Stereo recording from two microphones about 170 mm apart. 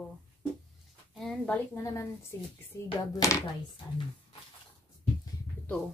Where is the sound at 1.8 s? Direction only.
15° left (ahead or behind).